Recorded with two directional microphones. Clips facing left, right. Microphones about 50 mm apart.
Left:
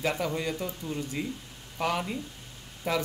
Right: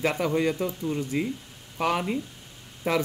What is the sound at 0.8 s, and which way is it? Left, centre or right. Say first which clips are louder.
Speech: right 6 dB; centre.